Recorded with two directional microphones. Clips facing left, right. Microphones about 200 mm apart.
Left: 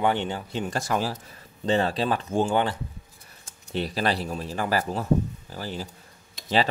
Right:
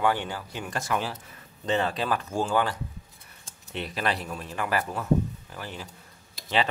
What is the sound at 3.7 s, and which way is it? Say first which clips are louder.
A man's voice: left 4 dB; 35° left (ahead or behind).